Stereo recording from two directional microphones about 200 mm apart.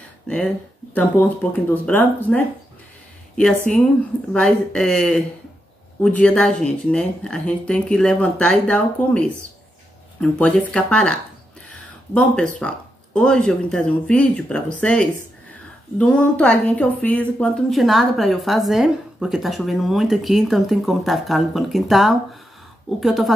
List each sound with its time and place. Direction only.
0.3 s speech: 5° left (ahead or behind)
3.7 s a woman's voice: 40° left (ahead or behind)
4.3 s speech: 5° left (ahead or behind)
10.2 s speech: 5° left (ahead or behind)